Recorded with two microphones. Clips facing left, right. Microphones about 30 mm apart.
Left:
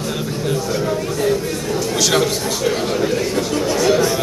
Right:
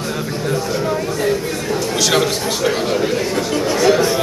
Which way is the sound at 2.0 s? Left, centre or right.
Centre.